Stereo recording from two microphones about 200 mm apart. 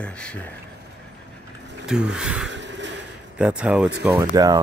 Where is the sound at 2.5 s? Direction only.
65° right (ahead or behind).